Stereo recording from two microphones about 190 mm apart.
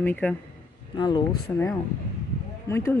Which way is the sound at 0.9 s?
25° left (ahead or behind).